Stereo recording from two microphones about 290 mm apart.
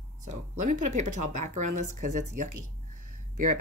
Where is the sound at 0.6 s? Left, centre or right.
Right.